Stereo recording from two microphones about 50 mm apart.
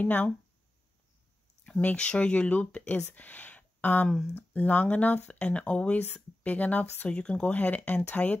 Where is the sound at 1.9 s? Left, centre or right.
Centre.